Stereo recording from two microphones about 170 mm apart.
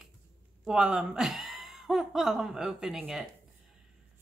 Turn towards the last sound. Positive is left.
turn(degrees=-5)  # may be behind; listen again after turning